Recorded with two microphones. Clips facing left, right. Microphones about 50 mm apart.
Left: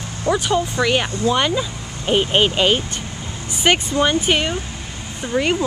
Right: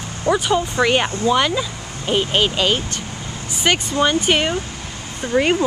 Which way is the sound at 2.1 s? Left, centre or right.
Centre.